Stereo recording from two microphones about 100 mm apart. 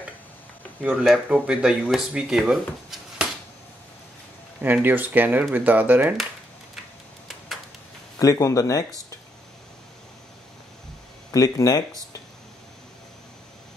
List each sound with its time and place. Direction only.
0.7 s speech: 10° right (ahead or behind)
4.6 s speech: 20° right (ahead or behind)
8.2 s speech: 35° left (ahead or behind)
11.3 s speech: 35° left (ahead or behind)